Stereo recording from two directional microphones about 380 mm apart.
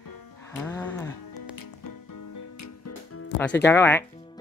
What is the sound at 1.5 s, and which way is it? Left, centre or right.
Music, left.